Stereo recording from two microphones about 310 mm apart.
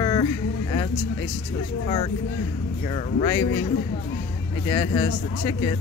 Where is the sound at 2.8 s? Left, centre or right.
Centre.